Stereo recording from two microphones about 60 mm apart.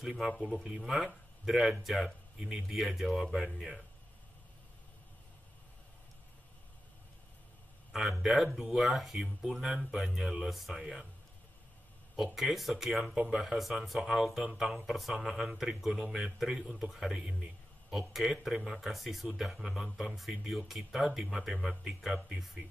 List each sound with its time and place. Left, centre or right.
0.6 s speech: centre
7.9 s speech: centre
12.2 s speech: centre